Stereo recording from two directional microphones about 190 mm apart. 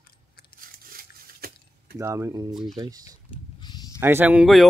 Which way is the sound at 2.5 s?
Centre (ahead or behind).